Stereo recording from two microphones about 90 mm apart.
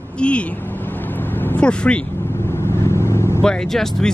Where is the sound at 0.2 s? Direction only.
15° left (ahead or behind).